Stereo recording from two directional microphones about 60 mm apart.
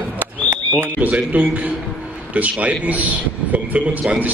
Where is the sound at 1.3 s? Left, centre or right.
Right.